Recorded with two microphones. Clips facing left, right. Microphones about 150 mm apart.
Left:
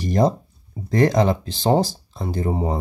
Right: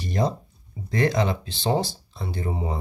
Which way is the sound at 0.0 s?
40° left (ahead or behind).